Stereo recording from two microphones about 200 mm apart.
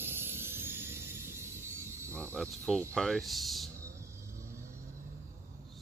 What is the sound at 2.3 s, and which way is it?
Speech, 5° left (ahead or behind).